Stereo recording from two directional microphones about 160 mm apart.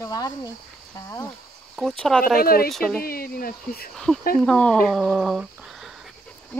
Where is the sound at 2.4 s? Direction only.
70° left (ahead or behind).